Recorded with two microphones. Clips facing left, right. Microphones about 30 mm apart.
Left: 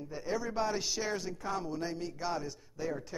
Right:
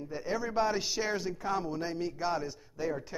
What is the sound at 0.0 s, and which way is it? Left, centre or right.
A man's voice, centre.